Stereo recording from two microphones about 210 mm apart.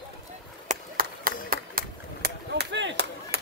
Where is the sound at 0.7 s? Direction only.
45° right (ahead or behind).